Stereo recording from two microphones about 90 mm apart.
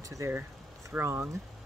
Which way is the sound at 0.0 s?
40° right (ahead or behind).